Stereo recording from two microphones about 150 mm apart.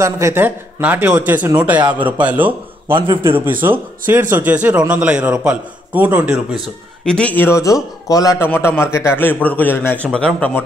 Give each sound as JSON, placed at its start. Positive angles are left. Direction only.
{"t": 0.0, "sound": "a man's voice", "side_deg": -15}
{"t": 3.0, "sound": "a man's voice", "side_deg": -35}
{"t": 3.6, "sound": "a man's voice", "side_deg": -15}
{"t": 7.1, "sound": "a man's voice", "side_deg": 10}